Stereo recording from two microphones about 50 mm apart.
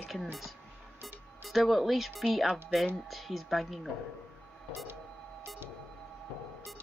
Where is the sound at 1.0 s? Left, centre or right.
Centre.